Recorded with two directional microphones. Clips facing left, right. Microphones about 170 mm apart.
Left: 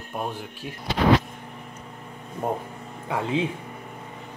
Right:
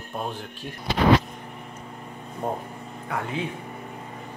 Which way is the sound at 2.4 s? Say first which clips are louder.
Left 2 dB; 20° left (ahead or behind).